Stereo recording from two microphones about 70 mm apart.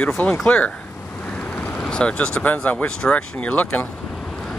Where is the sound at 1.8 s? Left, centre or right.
Centre.